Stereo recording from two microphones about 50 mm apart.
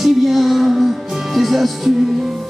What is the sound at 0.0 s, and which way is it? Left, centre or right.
Music, centre.